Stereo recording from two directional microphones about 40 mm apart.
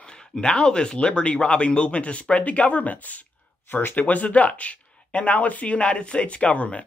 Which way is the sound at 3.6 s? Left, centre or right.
Left.